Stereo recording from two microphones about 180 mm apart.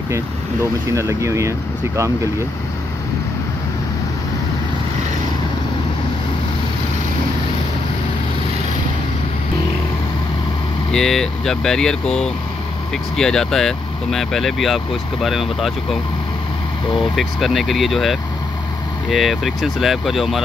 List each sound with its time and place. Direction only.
0.9 s speech: 15° right (ahead or behind)
10.9 s speech: centre (ahead or behind)
17.1 s speech: centre (ahead or behind)